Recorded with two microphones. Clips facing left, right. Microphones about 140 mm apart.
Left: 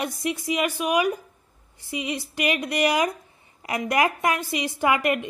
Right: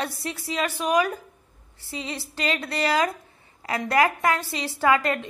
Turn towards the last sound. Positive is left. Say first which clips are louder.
# even
turn(degrees=15)  # may be behind; listen again after turning